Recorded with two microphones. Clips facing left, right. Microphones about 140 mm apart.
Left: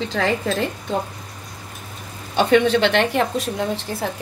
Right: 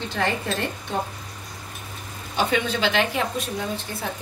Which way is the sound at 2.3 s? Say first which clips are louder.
Left 8 dB; 70° left (ahead or behind).